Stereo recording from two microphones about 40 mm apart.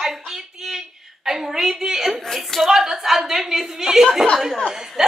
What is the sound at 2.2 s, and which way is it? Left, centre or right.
Speech, centre.